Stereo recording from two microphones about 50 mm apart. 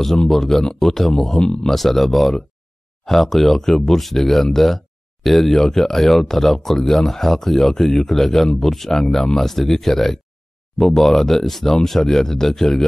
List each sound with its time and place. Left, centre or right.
0.3 s speech: centre